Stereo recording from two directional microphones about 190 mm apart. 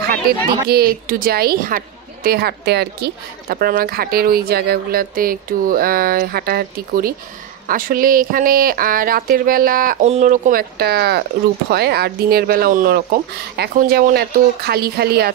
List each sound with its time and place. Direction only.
0.7 s a woman's voice: 55° right (ahead or behind)